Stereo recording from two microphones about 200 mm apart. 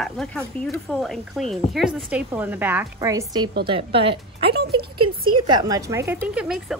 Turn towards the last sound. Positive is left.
turn(degrees=-5)  # may be behind; listen again after turning